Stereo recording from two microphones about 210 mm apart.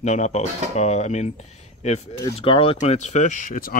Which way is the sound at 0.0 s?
35° left (ahead or behind).